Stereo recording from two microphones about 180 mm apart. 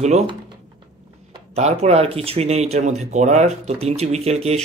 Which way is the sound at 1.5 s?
35° right (ahead or behind).